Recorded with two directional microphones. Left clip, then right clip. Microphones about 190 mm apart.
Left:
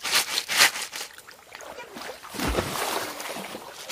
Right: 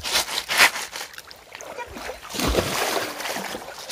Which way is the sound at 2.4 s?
50° right (ahead or behind).